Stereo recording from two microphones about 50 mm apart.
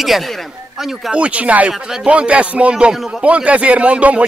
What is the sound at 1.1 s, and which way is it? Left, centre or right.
Speech, right.